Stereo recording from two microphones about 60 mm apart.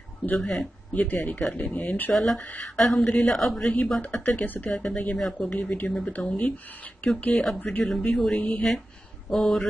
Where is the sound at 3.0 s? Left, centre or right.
Centre.